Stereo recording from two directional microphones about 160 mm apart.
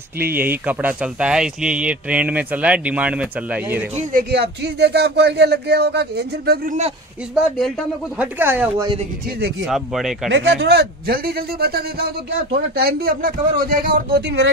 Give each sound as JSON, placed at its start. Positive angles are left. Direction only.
{"t": 0.3, "sound": "speech", "side_deg": -10}
{"t": 4.1, "sound": "speech", "side_deg": -80}
{"t": 7.3, "sound": "speech", "side_deg": 0}
{"t": 8.2, "sound": "speech", "side_deg": -10}
{"t": 9.7, "sound": "speech", "side_deg": 0}
{"t": 10.5, "sound": "speech", "side_deg": -90}